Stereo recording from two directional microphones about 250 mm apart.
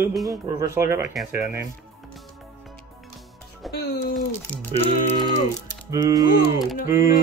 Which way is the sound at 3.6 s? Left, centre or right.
Centre.